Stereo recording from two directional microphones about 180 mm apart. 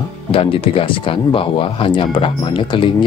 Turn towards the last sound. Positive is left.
turn(degrees=25)  # may be behind; listen again after turning